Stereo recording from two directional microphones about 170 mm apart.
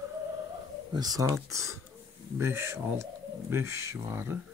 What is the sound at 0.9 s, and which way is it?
Speech, 20° right (ahead or behind).